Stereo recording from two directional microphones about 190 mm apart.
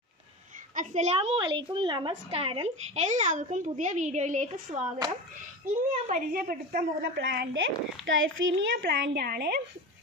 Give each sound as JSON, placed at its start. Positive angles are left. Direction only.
{"t": 0.7, "sound": "a woman's voice", "side_deg": -35}
{"t": 8.0, "sound": "a child's voice", "side_deg": -75}